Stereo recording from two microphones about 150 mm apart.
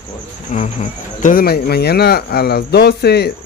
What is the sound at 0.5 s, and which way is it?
Speech, 55° left (ahead or behind).